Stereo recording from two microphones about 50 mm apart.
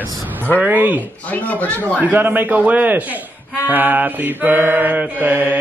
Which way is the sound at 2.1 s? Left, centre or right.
Right.